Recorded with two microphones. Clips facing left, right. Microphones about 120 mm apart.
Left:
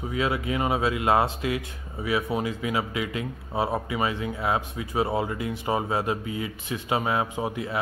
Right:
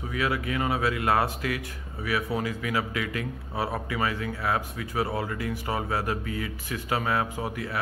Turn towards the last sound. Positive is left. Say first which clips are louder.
# left 3 dB
turn(degrees=20)  # may be behind; listen again after turning